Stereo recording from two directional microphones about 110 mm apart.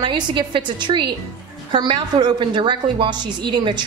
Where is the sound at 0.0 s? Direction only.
45° right (ahead or behind).